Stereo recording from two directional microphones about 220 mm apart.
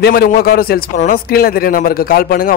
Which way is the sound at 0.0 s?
45° left (ahead or behind).